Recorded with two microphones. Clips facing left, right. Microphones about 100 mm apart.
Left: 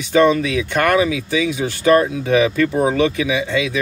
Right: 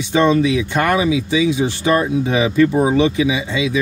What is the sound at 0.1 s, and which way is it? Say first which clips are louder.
Speech: even; 20° right (ahead or behind).